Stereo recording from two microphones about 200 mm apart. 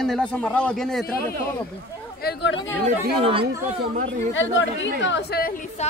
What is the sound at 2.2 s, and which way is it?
Chatter, 60° left (ahead or behind).